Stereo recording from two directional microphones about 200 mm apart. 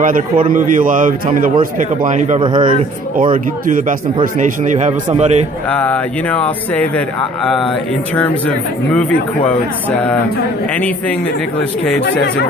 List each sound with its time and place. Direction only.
0.5 s a man's voice: 40° right (ahead or behind)
4.4 s a man's voice: 35° right (ahead or behind)
5.8 s speech: 5° left (ahead or behind)
8.2 s speech: 5° left (ahead or behind)